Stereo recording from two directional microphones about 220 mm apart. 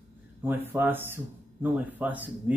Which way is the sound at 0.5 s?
10° right (ahead or behind).